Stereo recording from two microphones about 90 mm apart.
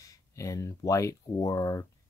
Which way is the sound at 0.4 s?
35° left (ahead or behind).